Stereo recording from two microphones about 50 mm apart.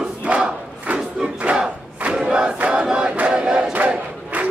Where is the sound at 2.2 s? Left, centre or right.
Centre.